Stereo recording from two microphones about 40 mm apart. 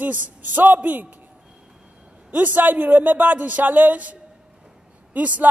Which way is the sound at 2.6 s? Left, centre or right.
Right.